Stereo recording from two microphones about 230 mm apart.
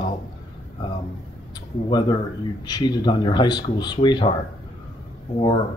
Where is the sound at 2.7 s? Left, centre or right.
Centre.